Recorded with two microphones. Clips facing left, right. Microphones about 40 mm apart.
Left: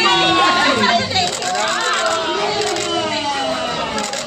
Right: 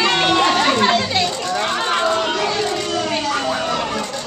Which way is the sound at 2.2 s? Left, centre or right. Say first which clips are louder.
Left 1 dB; centre.